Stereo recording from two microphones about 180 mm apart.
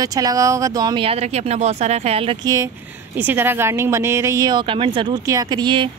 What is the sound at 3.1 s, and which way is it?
Speech, 10° right (ahead or behind).